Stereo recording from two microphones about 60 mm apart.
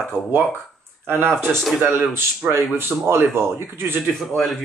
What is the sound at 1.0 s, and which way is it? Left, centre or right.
A man's voice, right.